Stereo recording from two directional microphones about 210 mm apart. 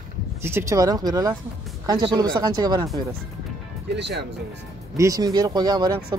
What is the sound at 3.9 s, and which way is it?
Speech, 55° right (ahead or behind).